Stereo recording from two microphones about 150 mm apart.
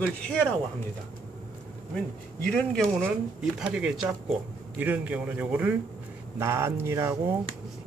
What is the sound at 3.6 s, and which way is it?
Speech, 5° right (ahead or behind).